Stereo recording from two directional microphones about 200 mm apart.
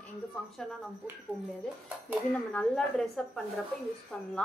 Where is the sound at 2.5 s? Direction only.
5° left (ahead or behind).